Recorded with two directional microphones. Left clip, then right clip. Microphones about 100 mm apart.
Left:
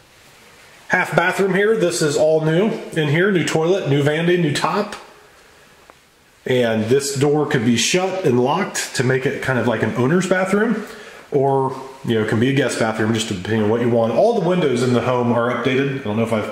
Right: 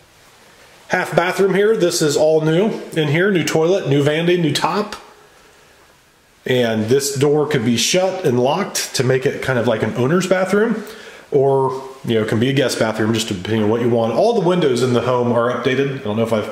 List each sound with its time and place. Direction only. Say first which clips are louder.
0.8 s speech: even; 15° right (ahead or behind)
6.4 s speech: right 1 dB; 15° right (ahead or behind)